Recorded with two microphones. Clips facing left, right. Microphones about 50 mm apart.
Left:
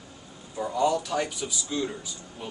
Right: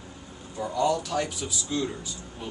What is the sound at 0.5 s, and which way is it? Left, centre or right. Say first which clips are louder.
A man's voice: left 1 dB; centre.